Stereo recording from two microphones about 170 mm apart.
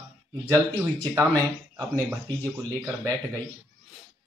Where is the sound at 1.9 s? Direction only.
5° left (ahead or behind).